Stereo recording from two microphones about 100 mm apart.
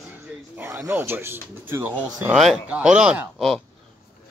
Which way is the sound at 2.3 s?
5° right (ahead or behind).